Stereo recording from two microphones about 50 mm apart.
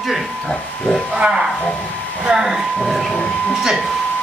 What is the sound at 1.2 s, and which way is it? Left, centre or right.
Speech, centre.